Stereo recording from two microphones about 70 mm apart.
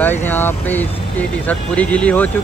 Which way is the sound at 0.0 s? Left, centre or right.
Left.